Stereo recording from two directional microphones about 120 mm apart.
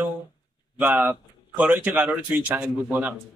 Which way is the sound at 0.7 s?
15° right (ahead or behind).